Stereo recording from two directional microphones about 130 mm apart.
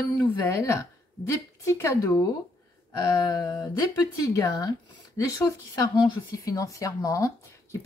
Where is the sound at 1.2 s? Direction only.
25° left (ahead or behind).